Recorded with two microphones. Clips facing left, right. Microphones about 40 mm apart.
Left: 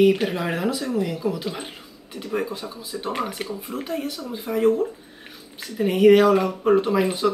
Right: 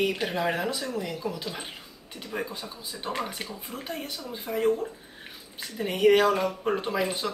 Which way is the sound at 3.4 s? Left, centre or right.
Left.